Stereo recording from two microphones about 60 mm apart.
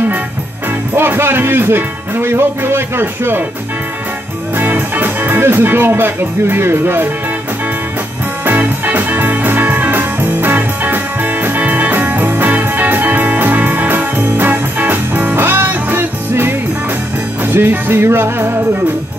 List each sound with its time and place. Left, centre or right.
0.9 s speech: right
4.6 s speech: right
8.5 s music: right